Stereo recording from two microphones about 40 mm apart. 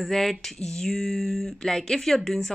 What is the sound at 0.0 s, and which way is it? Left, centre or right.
Speech, centre.